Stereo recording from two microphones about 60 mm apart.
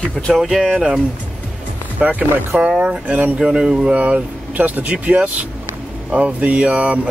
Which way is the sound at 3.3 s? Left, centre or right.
Centre.